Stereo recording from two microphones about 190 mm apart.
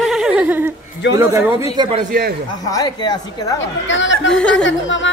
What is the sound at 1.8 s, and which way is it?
Speech, 30° right (ahead or behind).